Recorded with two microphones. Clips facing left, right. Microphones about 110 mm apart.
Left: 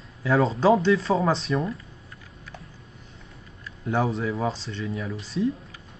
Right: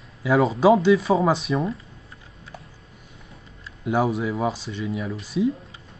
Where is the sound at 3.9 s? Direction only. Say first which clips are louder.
Right 3 dB; 5° right (ahead or behind).